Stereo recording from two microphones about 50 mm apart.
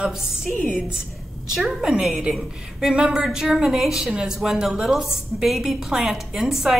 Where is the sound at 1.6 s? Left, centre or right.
Centre.